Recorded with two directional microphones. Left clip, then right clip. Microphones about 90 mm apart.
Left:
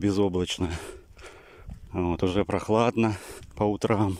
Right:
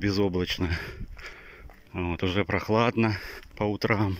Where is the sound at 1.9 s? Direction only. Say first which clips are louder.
Left 3 dB; 50° left (ahead or behind); by 4.1 s 30° left (ahead or behind).